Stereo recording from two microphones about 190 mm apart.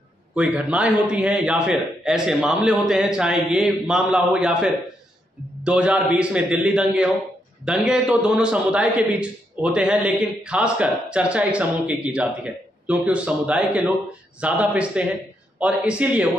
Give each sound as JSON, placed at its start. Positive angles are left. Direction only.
{"t": 0.3, "sound": "a man's voice", "side_deg": -5}